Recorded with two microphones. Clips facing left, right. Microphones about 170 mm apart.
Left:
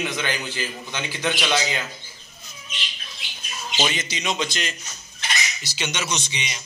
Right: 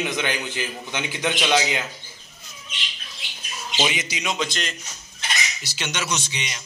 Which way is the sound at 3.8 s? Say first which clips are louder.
Right 1 dB; 10° right (ahead or behind).